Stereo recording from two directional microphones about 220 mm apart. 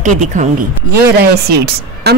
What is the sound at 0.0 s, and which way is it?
Speech, 35° right (ahead or behind).